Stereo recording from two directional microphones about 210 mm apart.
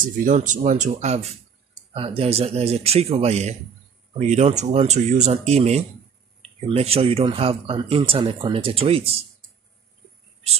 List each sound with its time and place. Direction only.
0.2 s speech: 40° right (ahead or behind)